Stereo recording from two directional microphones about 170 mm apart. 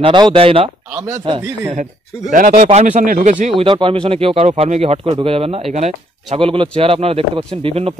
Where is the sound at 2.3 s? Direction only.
50° right (ahead or behind).